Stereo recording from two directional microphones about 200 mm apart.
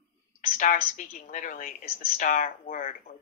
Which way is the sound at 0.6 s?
40° left (ahead or behind).